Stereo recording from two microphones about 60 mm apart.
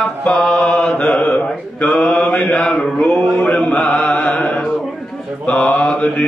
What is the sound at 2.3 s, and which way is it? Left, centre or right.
Mantra, left.